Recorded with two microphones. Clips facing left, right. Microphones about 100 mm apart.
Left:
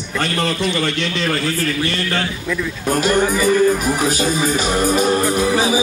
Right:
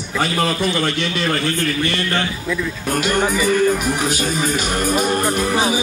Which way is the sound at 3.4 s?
40° left (ahead or behind).